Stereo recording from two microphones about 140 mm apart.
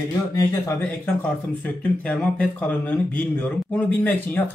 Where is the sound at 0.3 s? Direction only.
20° left (ahead or behind).